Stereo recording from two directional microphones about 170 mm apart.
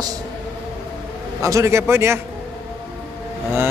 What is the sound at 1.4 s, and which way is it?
Speech, 15° right (ahead or behind).